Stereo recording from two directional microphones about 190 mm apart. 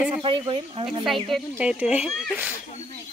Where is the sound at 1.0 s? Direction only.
Centre (ahead or behind).